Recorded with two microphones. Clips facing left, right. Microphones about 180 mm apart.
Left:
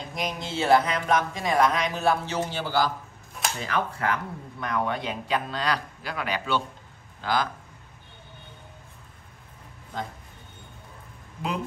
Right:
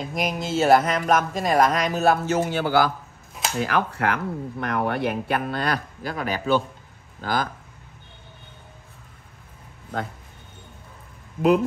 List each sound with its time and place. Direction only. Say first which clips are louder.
0.1 s speech: right 5 dB; 45° right (ahead or behind)